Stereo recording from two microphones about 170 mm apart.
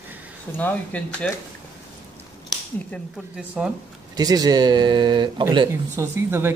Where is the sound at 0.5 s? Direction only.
10° left (ahead or behind).